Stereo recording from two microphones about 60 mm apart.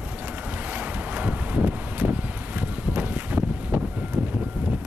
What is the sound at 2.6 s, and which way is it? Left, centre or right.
Wind, right.